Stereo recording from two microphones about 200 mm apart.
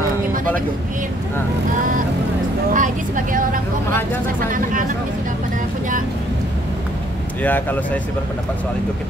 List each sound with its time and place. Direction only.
2.7 s speech: 40° right (ahead or behind)
7.4 s speech: 10° left (ahead or behind)